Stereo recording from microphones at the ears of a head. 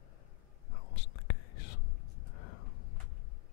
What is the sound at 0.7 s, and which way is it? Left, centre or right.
Whispering, left.